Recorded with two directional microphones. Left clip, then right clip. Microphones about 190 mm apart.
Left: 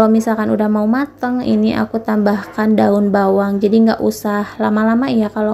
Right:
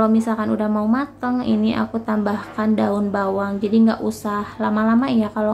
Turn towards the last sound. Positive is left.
turn(degrees=20)  # may be behind; listen again after turning